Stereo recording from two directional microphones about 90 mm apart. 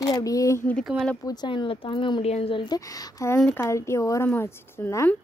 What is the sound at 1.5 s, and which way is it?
A woman's voice, 70° left (ahead or behind).